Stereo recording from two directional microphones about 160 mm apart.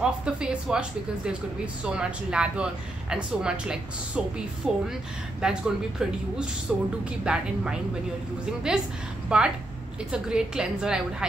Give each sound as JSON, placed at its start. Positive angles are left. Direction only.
{"t": 0.0, "sound": "speech", "side_deg": -5}
{"t": 9.3, "sound": "a woman's voice", "side_deg": -5}